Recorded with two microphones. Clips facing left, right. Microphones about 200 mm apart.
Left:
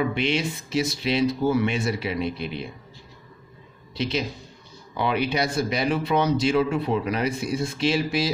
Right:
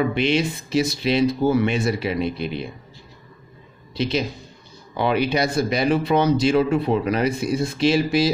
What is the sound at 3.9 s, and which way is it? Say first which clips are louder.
Speech: right 4 dB; 35° right (ahead or behind).